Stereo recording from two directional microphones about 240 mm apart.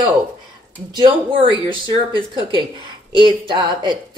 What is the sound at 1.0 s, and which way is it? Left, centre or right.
Speech, right.